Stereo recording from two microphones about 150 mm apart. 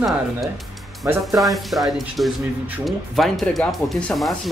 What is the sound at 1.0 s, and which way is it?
Speech, 15° right (ahead or behind).